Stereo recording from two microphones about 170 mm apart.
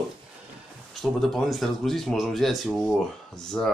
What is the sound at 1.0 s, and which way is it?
Speech, centre (ahead or behind).